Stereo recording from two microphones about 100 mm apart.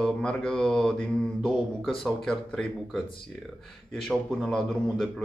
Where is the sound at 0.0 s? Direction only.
5° left (ahead or behind).